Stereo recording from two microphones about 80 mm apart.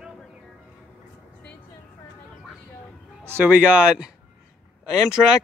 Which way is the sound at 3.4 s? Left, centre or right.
Centre.